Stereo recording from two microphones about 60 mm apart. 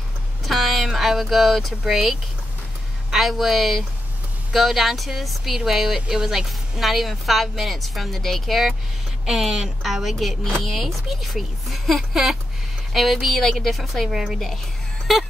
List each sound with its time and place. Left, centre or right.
0.5 s speech: centre